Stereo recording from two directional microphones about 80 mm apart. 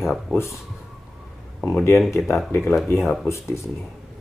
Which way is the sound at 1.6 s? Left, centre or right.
Centre.